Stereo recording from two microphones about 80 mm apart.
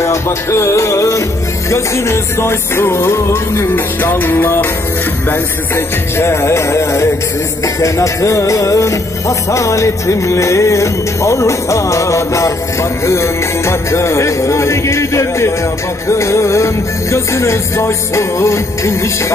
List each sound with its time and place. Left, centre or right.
0.0 s music: left